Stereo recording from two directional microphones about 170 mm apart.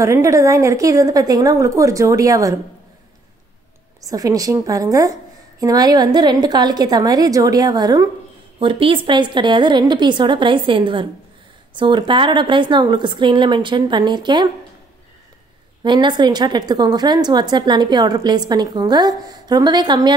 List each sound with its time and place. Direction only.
0.0 s a woman's voice: 15° right (ahead or behind)
4.1 s a woman's voice: 20° right (ahead or behind)
15.8 s a woman's voice: 25° right (ahead or behind)